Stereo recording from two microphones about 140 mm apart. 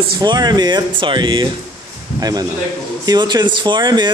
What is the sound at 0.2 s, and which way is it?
A man's voice, 30° right (ahead or behind).